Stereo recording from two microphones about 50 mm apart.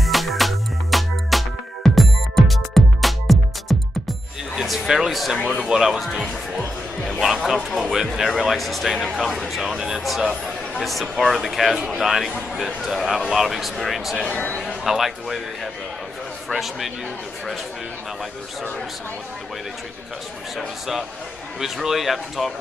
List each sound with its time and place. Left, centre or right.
0.0 s music: centre
4.6 s a sound: centre
5.6 s a man's voice: centre
10.0 s a man's voice: centre
14.3 s speech: left
14.6 s a man's voice: centre
20.5 s a man's voice: centre